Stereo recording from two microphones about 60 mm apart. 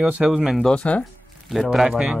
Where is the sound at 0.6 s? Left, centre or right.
Centre.